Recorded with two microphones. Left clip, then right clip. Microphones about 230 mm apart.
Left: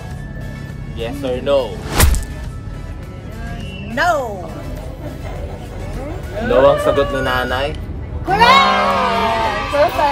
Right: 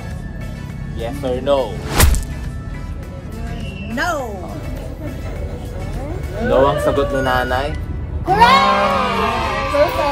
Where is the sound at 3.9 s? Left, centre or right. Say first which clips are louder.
Left 5 dB; centre.